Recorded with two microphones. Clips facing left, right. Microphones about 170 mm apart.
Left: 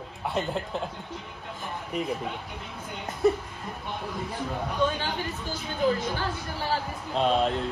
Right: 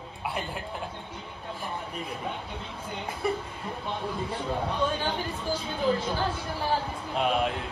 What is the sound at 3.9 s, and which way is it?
Speech, 30° right (ahead or behind).